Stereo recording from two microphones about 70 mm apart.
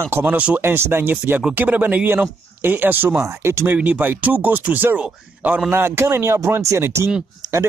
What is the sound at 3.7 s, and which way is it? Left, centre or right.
Speech, right.